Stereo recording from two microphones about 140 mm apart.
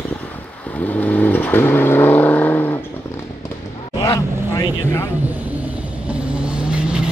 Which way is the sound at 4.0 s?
30° left (ahead or behind).